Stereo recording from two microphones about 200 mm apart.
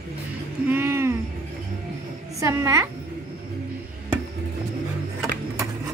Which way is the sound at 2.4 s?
15° right (ahead or behind).